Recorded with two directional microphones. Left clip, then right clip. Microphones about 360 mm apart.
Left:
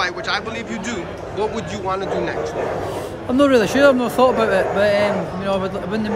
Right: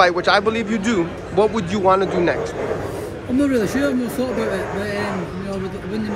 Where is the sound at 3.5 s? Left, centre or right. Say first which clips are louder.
Left 5 dB; centre.